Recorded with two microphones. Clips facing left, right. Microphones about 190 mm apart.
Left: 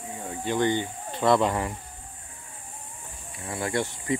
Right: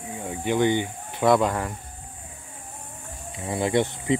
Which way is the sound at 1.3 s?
Centre (ahead or behind).